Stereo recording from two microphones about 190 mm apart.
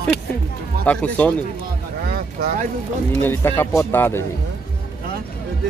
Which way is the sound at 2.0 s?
55° right (ahead or behind).